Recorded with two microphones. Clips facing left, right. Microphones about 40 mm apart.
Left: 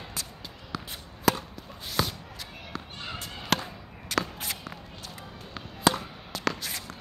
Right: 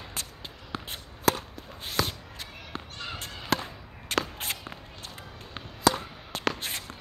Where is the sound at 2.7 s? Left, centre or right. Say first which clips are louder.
Even; right.